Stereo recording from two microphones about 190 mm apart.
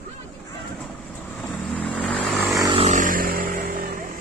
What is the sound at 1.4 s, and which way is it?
Vehicle, 5° left (ahead or behind).